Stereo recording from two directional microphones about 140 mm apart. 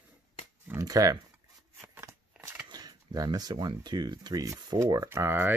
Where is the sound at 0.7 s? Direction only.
25° right (ahead or behind).